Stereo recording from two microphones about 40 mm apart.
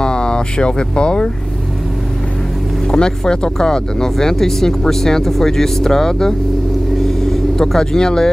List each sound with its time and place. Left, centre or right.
0.0 s speech: left
2.9 s speech: centre
7.0 s vehicle: centre